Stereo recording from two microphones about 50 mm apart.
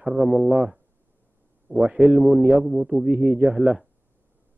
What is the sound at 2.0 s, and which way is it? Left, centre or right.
A man's voice, centre.